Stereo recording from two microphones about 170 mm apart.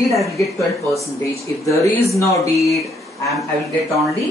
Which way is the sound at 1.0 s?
15° left (ahead or behind).